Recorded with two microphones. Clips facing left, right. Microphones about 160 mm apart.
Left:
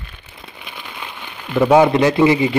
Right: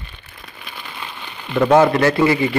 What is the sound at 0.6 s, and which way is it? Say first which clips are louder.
A man's voice: even; 15° left (ahead or behind).